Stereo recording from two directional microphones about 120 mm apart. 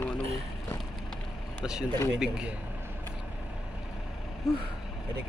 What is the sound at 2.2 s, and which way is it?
Speech, 10° right (ahead or behind).